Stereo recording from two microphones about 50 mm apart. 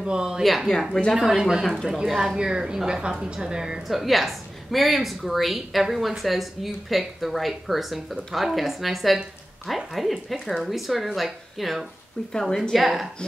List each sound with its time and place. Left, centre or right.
0.0 s a woman's voice: centre
0.4 s a woman's voice: centre
1.1 s a woman's voice: centre
3.9 s a woman's voice: centre
12.3 s a woman's voice: centre
12.7 s a woman's voice: centre